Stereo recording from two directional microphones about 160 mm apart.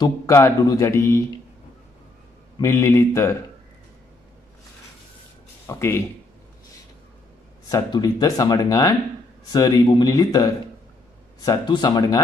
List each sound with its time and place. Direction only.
0.0 s a man's voice: 20° left (ahead or behind)
2.6 s a man's voice: 15° left (ahead or behind)
5.7 s a man's voice: 15° left (ahead or behind)
7.7 s speech: 25° left (ahead or behind)